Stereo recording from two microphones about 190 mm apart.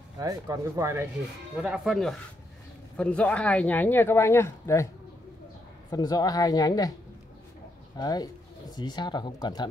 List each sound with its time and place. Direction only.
0.2 s speech: 15° right (ahead or behind)
1.6 s speech: 5° right (ahead or behind); by 4.8 s 15° left (ahead or behind)
5.9 s speech: 20° left (ahead or behind)
8.0 s speech: 20° left (ahead or behind)